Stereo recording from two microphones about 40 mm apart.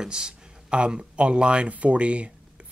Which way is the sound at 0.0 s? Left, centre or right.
Right.